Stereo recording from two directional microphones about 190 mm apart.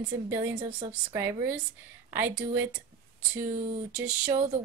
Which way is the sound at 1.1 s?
10° right (ahead or behind).